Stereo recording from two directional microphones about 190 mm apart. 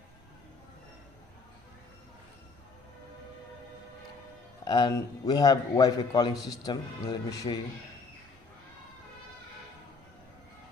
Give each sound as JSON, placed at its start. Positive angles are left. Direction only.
{"t": 4.6, "sound": "a man's voice", "side_deg": 20}